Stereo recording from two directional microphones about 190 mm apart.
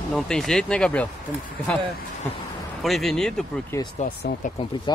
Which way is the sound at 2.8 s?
Centre (ahead or behind).